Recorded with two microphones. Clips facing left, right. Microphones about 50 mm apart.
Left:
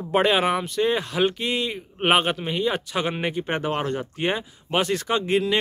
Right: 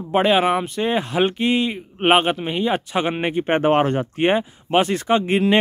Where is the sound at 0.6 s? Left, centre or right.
Right.